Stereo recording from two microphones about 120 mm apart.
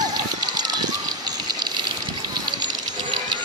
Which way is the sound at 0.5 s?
35° right (ahead or behind).